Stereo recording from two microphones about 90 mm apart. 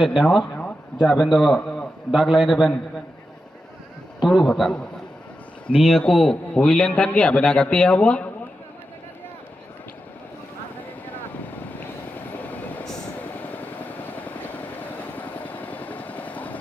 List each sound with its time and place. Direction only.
0.0 s a man's voice: centre (ahead or behind)
0.4 s a sound: 10° left (ahead or behind)
1.1 s a man's voice: centre (ahead or behind)
4.2 s a man's voice: centre (ahead or behind)
12.3 s vehicle: 20° left (ahead or behind)